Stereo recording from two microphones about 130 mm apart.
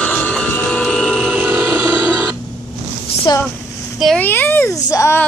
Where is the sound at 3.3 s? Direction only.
35° left (ahead or behind).